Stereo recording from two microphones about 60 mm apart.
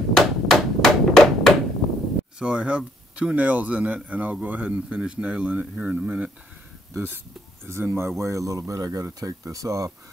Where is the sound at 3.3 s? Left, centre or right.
Right.